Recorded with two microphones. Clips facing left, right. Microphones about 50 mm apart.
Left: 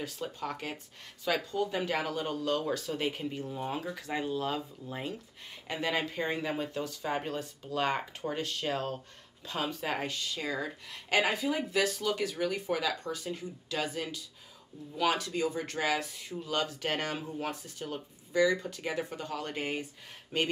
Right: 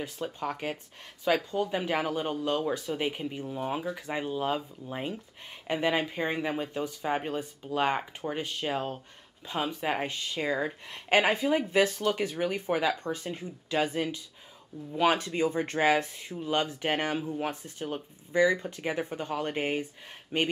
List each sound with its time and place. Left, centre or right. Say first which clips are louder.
0.2 s speech: right 5 dB; centre